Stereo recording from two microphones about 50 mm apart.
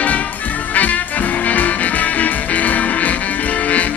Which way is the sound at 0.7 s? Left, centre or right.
Left.